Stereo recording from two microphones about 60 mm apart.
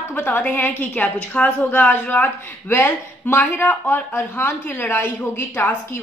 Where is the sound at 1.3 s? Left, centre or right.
Left.